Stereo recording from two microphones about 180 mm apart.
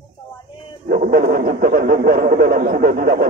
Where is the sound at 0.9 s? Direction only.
55° right (ahead or behind).